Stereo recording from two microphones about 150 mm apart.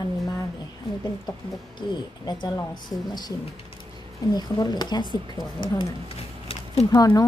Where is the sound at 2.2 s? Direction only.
30° left (ahead or behind).